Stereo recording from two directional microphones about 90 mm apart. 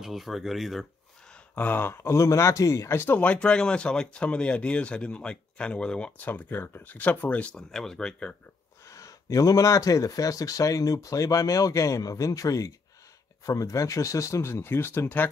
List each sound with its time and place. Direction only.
0.0 s speech: centre (ahead or behind)
1.3 s speech: 15° left (ahead or behind)
3.2 s speech: 15° left (ahead or behind)
8.8 s speech: 35° left (ahead or behind)